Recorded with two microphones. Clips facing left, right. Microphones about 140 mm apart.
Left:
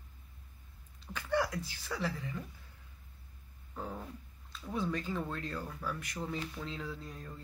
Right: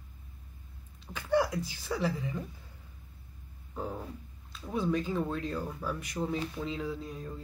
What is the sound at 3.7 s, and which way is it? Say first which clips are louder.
Speech: right 4 dB; 15° right (ahead or behind).